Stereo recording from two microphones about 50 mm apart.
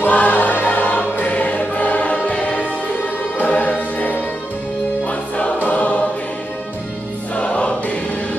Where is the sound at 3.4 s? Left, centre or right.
Left.